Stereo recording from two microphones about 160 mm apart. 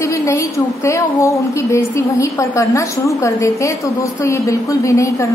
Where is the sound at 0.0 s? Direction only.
20° left (ahead or behind).